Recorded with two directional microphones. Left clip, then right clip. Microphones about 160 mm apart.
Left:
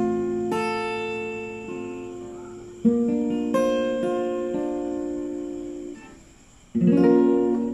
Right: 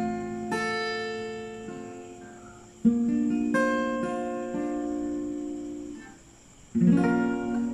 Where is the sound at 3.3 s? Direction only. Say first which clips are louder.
Left 3 dB; 20° left (ahead or behind).